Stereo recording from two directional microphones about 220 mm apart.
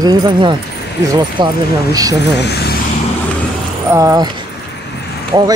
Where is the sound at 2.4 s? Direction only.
50° left (ahead or behind).